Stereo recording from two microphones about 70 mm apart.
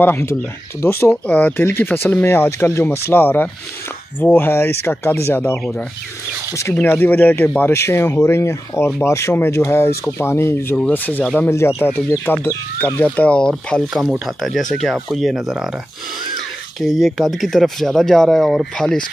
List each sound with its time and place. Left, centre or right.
0.0 s speech: left
5.3 s speech: left
6.9 s speech: left
7.7 s speech: left
10.9 s speech: left
11.5 s speech: left
13.0 s speech: left
14.0 s speech: centre
16.8 s speech: centre